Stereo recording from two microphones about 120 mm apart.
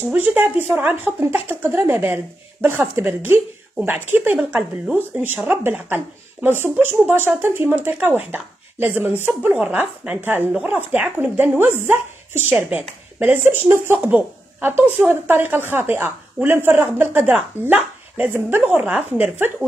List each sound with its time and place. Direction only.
0.1 s speech: 15° right (ahead or behind)
5.2 s speech: 15° right (ahead or behind)